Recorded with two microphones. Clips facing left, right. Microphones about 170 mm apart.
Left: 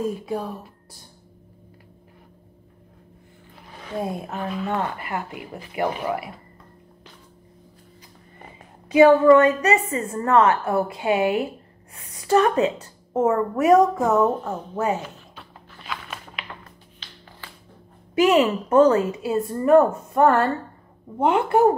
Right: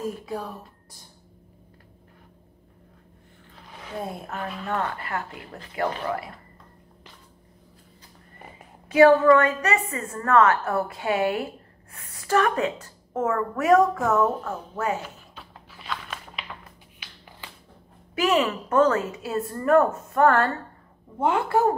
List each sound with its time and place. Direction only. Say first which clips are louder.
3.9 s speech: left 5 dB; 10° left (ahead or behind)
4.4 s speech: left 5 dB; centre (ahead or behind)
4.6 s speech: right 1 dB; 10° left (ahead or behind)
8.9 s a woman's voice: left 3 dB; 20° left (ahead or behind)
15.0 s a sound: left 2 dB; 5° right (ahead or behind)
18.2 s a woman's voice: left 5 dB; 20° left (ahead or behind)